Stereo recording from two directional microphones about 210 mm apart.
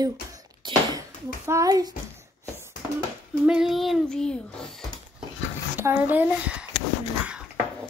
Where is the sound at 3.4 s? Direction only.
5° right (ahead or behind).